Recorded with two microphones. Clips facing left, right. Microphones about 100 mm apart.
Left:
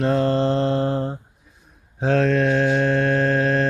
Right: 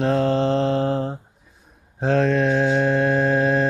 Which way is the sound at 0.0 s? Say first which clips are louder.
Even; centre (ahead or behind).